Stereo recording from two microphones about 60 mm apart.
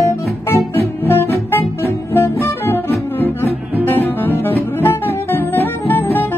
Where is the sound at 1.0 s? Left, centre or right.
Left.